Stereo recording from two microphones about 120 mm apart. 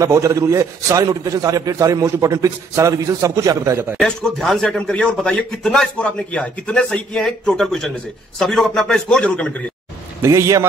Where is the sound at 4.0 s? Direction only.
5° left (ahead or behind).